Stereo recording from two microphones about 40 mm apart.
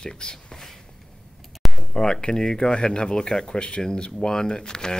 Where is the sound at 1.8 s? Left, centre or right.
Centre.